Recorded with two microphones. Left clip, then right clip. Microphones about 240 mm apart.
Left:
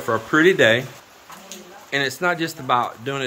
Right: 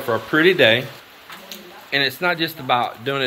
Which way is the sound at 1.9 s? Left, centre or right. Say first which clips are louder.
Right 2 dB; centre.